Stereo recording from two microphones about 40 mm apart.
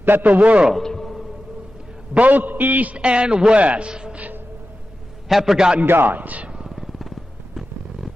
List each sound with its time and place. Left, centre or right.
0.0 s a man's voice: right
0.8 s music: centre
2.1 s a man's voice: right
3.0 s speech: right
3.6 s a man's voice: right
3.9 s speech: right
5.3 s a man's voice: centre
5.9 s a man's voice: right
6.1 s a man's voice: right
6.6 s vehicle: centre